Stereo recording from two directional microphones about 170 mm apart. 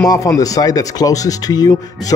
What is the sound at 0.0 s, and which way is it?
Speech, 20° left (ahead or behind).